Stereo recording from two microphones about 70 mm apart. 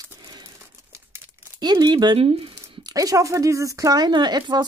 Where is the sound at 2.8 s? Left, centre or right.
Right.